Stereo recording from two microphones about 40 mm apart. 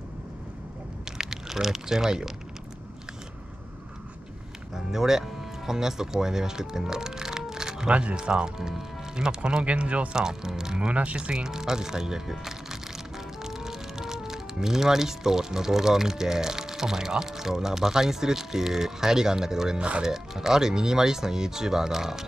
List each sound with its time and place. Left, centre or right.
1.1 s speech: centre
4.7 s speech: centre
7.9 s speech: right
10.1 s speech: centre
10.9 s speech: right; by 22.2 s centre